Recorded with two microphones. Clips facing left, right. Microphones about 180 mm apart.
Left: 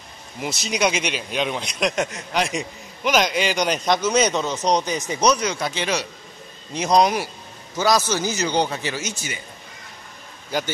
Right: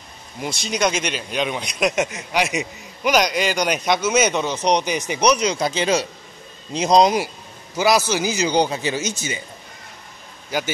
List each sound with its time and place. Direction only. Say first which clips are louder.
0.4 s a man's voice: right 1 dB; 5° left (ahead or behind); by 7.2 s 20° right (ahead or behind)
7.7 s a man's voice: right 2 dB; 10° right (ahead or behind)